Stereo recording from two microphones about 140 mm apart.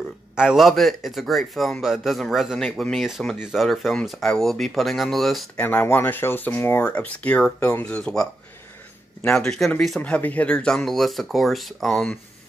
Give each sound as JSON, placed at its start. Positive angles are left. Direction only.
{"t": 0.4, "sound": "speech", "side_deg": -5}
{"t": 5.7, "sound": "speech", "side_deg": 15}